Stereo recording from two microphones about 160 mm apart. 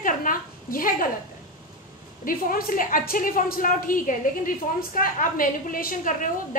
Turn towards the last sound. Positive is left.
turn(degrees=60)  # may be behind; listen again after turning